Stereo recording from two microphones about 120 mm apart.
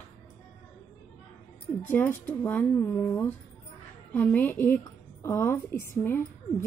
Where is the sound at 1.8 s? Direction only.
15° left (ahead or behind).